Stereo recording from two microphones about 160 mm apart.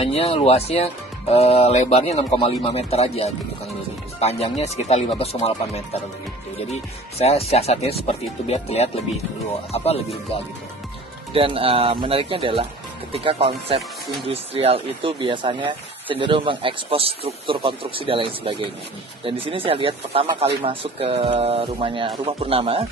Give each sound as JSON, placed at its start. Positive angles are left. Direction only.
{"t": 0.0, "sound": "speech", "side_deg": 40}
{"t": 6.7, "sound": "speech", "side_deg": 40}
{"t": 11.3, "sound": "speech", "side_deg": -35}